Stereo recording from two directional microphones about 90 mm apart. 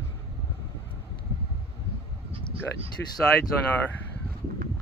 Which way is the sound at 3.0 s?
20° left (ahead or behind).